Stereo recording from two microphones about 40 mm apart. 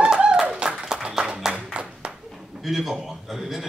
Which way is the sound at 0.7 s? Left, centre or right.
Centre.